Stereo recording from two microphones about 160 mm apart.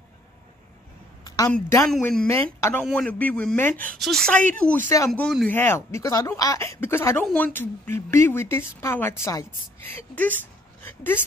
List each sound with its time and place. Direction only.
1.2 s a sound: 25° left (ahead or behind)
2.0 s speech: 15° left (ahead or behind)
2.8 s speech: 5° left (ahead or behind)
5.2 s speech: centre (ahead or behind)
5.5 s a woman's voice: 15° left (ahead or behind)